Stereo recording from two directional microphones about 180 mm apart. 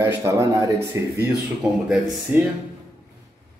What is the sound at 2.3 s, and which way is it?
Speech, 10° right (ahead or behind).